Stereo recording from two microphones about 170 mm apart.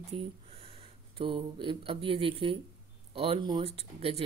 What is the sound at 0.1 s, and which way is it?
Speech, 35° right (ahead or behind).